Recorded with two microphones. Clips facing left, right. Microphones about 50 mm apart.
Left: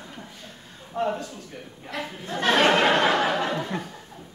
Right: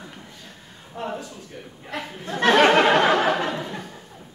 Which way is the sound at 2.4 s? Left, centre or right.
Right.